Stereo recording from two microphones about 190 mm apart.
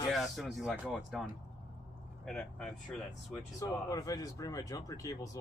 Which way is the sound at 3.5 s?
15° left (ahead or behind).